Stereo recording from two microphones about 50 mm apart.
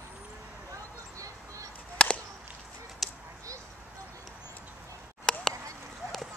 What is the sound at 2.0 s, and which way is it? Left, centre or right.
Whip, centre.